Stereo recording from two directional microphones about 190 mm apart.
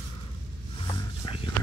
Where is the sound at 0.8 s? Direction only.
20° left (ahead or behind).